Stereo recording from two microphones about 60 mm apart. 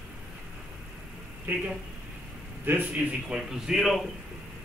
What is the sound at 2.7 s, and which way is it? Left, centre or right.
Speech, right.